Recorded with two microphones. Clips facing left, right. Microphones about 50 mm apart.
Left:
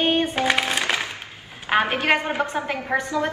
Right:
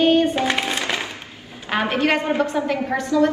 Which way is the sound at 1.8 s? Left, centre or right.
Left.